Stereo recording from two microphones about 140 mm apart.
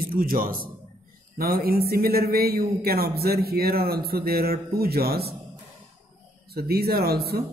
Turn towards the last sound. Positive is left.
turn(degrees=-90)